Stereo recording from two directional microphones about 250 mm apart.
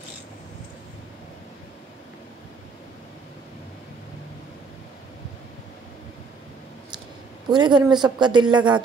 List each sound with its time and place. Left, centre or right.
7.5 s speech: centre